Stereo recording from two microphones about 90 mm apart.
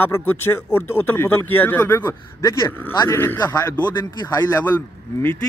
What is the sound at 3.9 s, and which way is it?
Speech, 45° left (ahead or behind).